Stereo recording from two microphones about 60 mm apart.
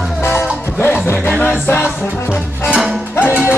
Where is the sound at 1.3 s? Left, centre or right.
Left.